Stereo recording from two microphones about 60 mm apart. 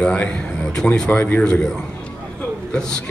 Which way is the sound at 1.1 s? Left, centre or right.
Left.